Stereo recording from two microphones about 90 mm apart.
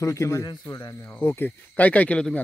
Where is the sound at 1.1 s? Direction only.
25° left (ahead or behind).